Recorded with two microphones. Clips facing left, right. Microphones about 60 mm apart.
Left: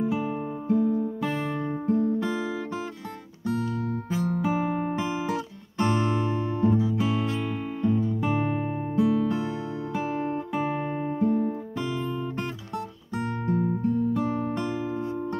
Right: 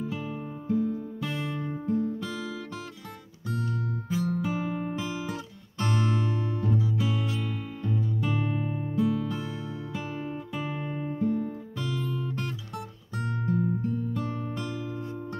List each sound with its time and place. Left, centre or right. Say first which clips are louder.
0.0 s music: left 7 dB; left
4.1 s music: left 2 dB; left
9.1 s music: left 6 dB; left
9.9 s music: left 8 dB; left
12.7 s music: left 5 dB; centre
13.5 s music: left 3 dB; left